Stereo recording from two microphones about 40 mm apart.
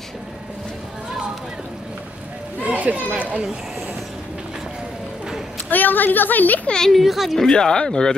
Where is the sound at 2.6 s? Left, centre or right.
Right.